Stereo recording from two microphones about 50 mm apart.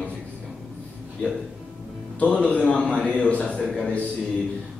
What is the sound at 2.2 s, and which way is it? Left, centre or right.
A man's voice, left.